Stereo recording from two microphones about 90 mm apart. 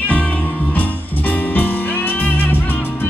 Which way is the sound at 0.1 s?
15° left (ahead or behind).